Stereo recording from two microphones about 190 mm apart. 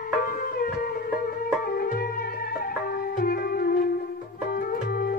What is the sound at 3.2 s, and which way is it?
Music, 50° left (ahead or behind).